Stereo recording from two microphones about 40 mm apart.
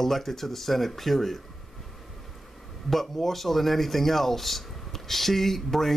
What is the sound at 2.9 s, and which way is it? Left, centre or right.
Speech, centre.